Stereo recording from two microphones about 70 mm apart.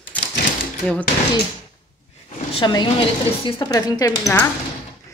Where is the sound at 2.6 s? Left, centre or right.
Left.